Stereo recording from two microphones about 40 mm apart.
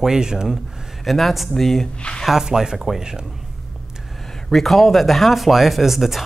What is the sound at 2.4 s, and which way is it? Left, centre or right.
Speech, centre.